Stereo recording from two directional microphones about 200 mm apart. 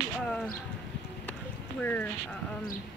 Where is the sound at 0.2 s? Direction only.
5° left (ahead or behind).